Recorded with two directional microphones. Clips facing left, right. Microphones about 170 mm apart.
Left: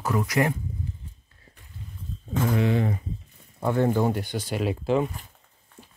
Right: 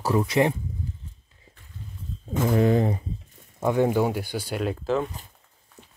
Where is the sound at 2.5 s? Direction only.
40° right (ahead or behind).